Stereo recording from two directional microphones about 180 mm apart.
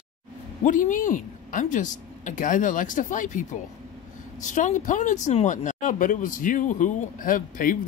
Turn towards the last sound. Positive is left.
turn(degrees=50)  # may be behind; listen again after turning